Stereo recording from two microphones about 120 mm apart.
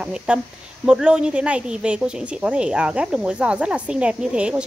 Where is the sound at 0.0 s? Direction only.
5° right (ahead or behind).